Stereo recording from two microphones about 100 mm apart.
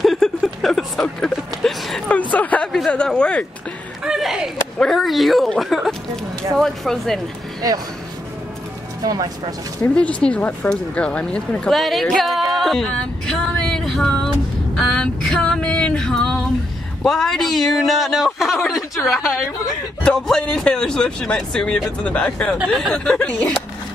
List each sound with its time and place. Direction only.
0.0 s a sound: centre (ahead or behind)
4.0 s a man's voice: 5° right (ahead or behind)
9.0 s speech: 40° right (ahead or behind)
9.9 s a woman's voice: 10° left (ahead or behind)
12.5 s music: centre (ahead or behind)
14.8 s female singing: 5° left (ahead or behind)
17.0 s a man's voice: 5° left (ahead or behind)